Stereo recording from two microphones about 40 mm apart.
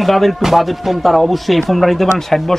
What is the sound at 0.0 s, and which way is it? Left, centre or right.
A man's voice, centre.